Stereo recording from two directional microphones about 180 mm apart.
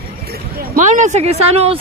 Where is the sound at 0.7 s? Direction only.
45° right (ahead or behind).